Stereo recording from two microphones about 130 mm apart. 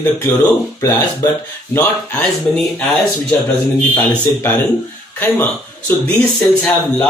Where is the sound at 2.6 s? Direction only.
5° left (ahead or behind).